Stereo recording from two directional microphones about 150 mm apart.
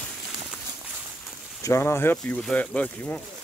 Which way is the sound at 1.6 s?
15° left (ahead or behind).